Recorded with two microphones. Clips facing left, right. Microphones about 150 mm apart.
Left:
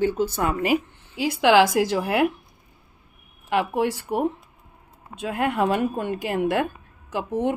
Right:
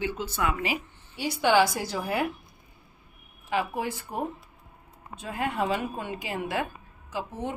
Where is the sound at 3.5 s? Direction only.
70° left (ahead or behind).